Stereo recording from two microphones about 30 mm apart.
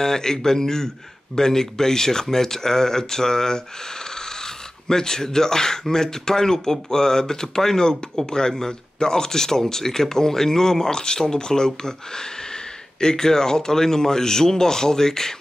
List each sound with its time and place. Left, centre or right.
0.0 s speech: centre